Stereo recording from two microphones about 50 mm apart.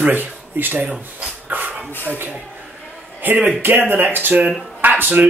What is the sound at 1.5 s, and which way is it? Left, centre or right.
Dog, right.